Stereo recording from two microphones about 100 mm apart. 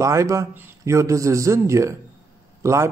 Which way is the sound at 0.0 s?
30° right (ahead or behind).